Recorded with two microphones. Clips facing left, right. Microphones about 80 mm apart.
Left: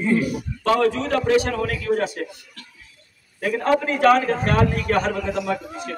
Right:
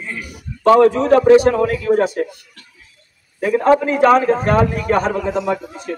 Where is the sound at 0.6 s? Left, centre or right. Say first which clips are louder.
Right 8 dB; right.